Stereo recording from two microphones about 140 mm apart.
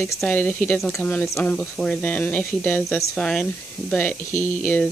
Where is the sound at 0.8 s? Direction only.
Centre (ahead or behind).